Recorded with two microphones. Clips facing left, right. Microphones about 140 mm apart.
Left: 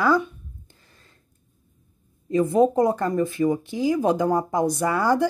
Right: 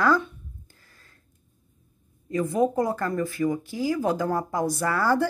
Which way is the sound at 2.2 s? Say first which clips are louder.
Left 5 dB; 25° left (ahead or behind).